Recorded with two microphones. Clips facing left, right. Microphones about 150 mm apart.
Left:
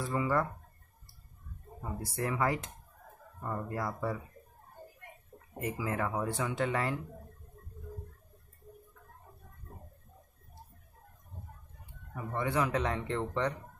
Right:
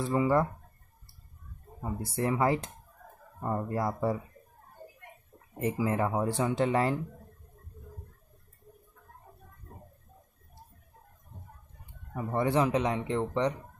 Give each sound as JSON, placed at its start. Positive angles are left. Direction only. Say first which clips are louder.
{"t": 0.0, "sound": "speech", "louder": "right 5 dB", "side_deg": -25}
{"t": 1.8, "sound": "speech", "louder": "right 4 dB", "side_deg": -25}
{"t": 5.6, "sound": "speech", "louder": "right 5 dB", "side_deg": -25}
{"t": 12.3, "sound": "speech", "louder": "right 5 dB", "side_deg": -35}